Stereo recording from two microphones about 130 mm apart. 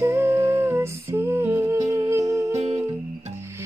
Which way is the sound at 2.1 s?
20° right (ahead or behind).